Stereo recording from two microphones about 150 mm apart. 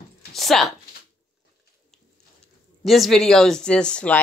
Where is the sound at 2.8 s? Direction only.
Centre (ahead or behind).